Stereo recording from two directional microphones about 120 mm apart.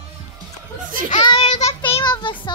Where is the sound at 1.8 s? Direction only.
50° left (ahead or behind).